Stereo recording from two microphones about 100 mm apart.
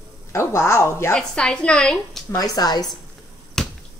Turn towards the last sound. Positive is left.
turn(degrees=5)  # may be behind; listen again after turning